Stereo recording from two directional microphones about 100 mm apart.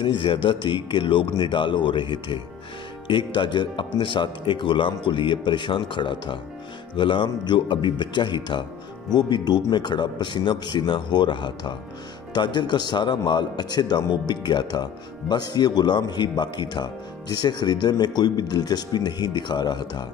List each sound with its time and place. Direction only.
0.0 s a man's voice: 55° left (ahead or behind)